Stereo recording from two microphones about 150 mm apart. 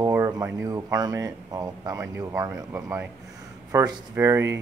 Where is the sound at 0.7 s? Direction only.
20° right (ahead or behind).